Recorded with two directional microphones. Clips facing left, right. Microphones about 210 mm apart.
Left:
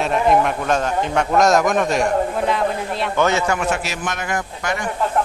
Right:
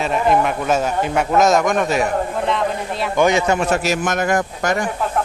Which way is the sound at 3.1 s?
15° right (ahead or behind).